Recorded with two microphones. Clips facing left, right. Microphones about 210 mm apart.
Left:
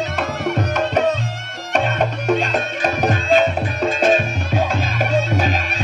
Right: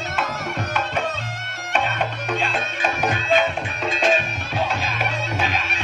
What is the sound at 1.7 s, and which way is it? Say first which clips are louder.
Music: left 5 dB; 45° left (ahead or behind).